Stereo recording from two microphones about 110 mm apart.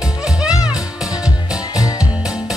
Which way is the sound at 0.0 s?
5° right (ahead or behind).